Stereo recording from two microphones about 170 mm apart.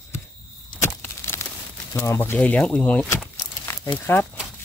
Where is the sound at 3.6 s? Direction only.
15° left (ahead or behind).